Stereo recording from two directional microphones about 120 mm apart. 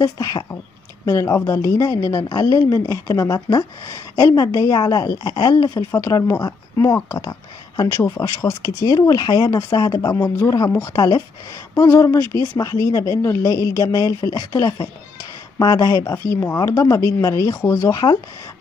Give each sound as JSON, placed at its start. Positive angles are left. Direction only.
{"t": 0.0, "sound": "speech", "side_deg": 30}